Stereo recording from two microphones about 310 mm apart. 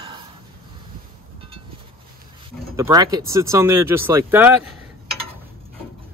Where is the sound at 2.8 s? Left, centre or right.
Centre.